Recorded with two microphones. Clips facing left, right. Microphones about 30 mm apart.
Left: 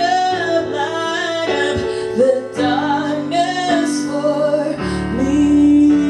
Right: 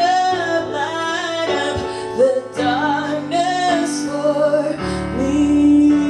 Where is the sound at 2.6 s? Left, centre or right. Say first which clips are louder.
Left 1 dB; centre.